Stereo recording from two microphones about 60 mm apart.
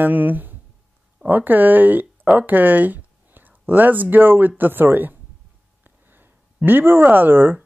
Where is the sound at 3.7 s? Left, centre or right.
Right.